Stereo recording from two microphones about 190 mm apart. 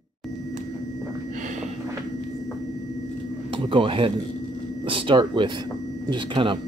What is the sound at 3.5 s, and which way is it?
Speech, 25° right (ahead or behind).